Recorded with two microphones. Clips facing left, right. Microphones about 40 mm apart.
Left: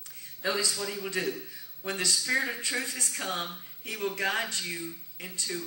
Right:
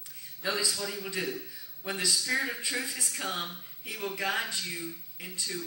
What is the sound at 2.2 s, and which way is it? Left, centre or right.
Speech, centre.